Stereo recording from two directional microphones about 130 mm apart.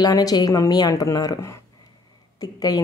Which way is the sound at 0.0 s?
30° left (ahead or behind).